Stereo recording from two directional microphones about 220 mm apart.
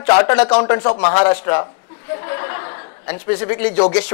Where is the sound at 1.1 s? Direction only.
10° left (ahead or behind).